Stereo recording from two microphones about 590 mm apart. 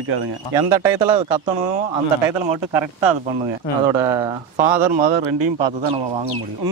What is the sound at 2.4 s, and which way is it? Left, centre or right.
Speech, right.